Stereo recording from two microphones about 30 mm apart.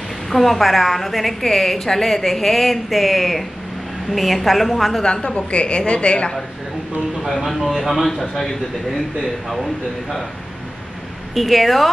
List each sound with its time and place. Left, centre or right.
0.3 s a woman's voice: centre
5.0 s a woman's voice: left
7.2 s a woman's voice: centre
8.0 s a man's voice: centre
11.3 s a woman's voice: centre